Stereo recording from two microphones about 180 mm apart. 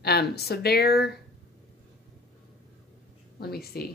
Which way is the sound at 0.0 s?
60° left (ahead or behind).